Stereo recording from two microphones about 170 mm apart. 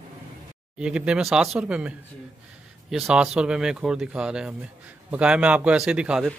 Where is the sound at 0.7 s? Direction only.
5° right (ahead or behind).